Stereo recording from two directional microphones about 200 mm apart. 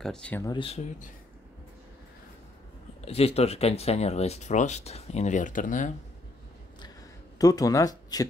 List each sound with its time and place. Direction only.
0.0 s speech: 5° left (ahead or behind)
0.5 s speech: 25° left (ahead or behind)
3.1 s speech: 30° left (ahead or behind)
7.3 s speech: 15° left (ahead or behind)